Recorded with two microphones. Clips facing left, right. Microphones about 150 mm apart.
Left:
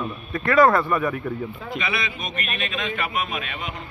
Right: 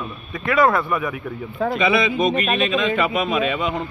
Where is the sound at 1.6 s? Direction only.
90° right.